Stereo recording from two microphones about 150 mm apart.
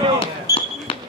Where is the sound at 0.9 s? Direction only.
40° left (ahead or behind).